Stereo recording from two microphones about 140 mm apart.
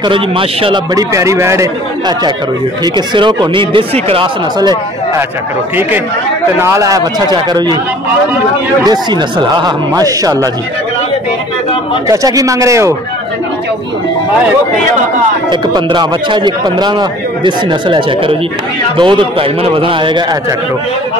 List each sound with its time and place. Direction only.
0.1 s a man's voice: 40° right (ahead or behind)
0.9 s a man's voice: 20° right (ahead or behind); by 4.3 s 40° right (ahead or behind)
4.6 s speech: 30° right (ahead or behind)
6.6 s speech: 25° right (ahead or behind)
8.8 s speech: 30° right (ahead or behind)
12.1 s speech: 25° right (ahead or behind)
15.5 s a man's voice: 30° right (ahead or behind)